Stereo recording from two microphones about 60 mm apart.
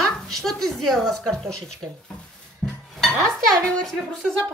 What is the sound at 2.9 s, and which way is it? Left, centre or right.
Speech, centre.